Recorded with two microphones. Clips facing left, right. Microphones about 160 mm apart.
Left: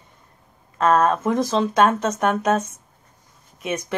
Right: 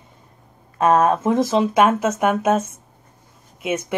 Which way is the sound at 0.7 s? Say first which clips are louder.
Right 2 dB; 15° right (ahead or behind).